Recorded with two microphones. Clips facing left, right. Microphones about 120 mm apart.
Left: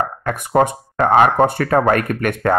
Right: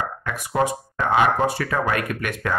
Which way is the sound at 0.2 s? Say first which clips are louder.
Left 7 dB; 50° left (ahead or behind).